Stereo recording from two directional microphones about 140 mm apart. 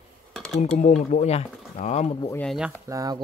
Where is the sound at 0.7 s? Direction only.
60° left (ahead or behind).